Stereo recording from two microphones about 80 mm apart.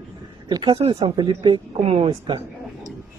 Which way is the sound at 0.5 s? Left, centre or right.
Right.